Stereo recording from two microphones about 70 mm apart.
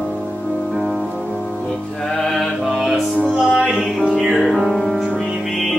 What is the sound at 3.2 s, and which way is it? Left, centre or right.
Music, centre.